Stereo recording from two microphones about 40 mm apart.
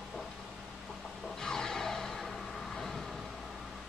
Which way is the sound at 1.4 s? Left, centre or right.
Centre.